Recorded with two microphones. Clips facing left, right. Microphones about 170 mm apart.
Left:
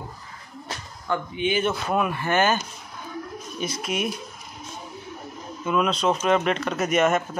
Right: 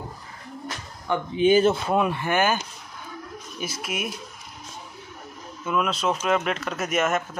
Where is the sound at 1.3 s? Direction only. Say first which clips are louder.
Right 8 dB; 35° right (ahead or behind).